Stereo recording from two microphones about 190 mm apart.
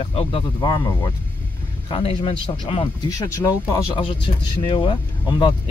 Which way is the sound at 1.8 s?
30° left (ahead or behind).